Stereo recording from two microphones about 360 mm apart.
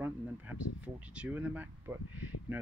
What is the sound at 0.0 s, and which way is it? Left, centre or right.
Speech, centre.